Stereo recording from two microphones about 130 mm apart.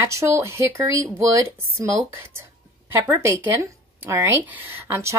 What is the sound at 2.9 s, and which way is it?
Speech, 20° right (ahead or behind).